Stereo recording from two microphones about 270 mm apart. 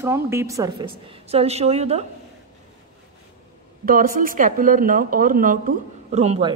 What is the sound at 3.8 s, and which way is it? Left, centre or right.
Speech, right.